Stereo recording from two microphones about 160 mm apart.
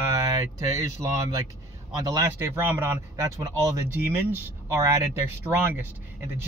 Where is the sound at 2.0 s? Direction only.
20° right (ahead or behind).